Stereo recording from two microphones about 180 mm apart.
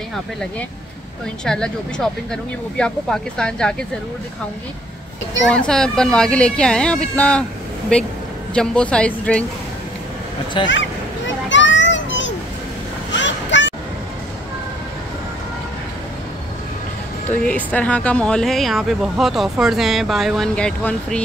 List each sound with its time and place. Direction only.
1.4 s speech: 5° left (ahead or behind)
5.5 s a woman's voice: 5° left (ahead or behind)
10.7 s a sound: 90° left
17.3 s speech: 10° left (ahead or behind)